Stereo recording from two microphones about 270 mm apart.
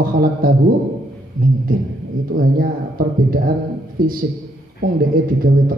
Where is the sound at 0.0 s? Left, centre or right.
Right.